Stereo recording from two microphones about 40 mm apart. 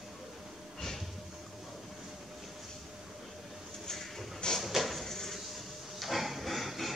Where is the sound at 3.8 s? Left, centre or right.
Centre.